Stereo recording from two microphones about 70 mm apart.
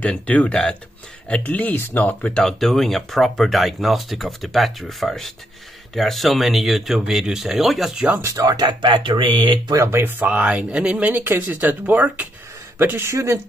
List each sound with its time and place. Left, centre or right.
0.0 s speech: centre
2.2 s speech: centre
7.9 s speech: centre
8.4 s speech: right
9.8 s speech: right